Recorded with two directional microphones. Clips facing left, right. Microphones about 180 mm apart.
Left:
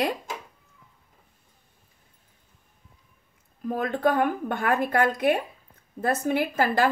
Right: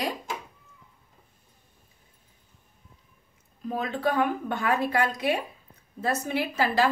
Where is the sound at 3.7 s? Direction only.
50° left (ahead or behind).